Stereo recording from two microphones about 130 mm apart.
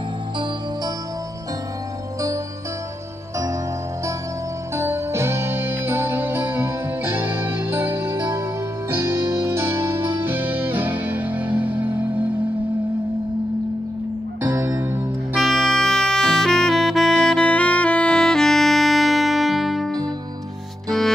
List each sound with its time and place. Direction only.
4.7 s music: 20° right (ahead or behind)
14.4 s music: 15° right (ahead or behind)
15.4 s saxophone: 5° left (ahead or behind)